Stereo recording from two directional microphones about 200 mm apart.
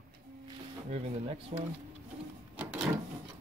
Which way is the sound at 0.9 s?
30° right (ahead or behind).